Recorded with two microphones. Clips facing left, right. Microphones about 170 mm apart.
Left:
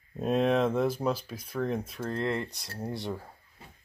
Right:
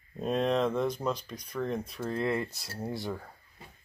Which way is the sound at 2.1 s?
5° right (ahead or behind).